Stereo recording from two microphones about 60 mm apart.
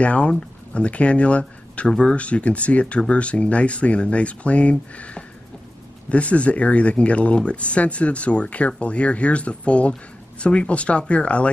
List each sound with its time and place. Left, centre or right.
0.0 s speech: left